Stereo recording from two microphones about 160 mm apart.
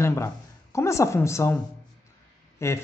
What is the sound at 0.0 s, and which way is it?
A man's voice, 15° left (ahead or behind).